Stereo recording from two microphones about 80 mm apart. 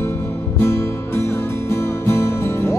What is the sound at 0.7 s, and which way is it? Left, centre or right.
Music, left.